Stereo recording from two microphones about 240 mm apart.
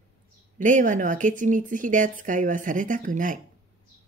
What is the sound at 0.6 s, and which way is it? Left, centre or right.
Speech, right.